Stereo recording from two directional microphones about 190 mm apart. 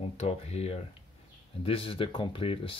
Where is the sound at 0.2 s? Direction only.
35° left (ahead or behind).